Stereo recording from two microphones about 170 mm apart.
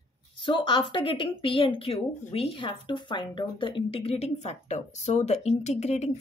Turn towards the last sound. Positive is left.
turn(degrees=40)  # may be behind; listen again after turning